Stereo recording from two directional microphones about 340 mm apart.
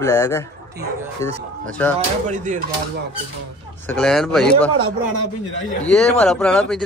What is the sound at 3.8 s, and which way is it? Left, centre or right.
Speech, centre.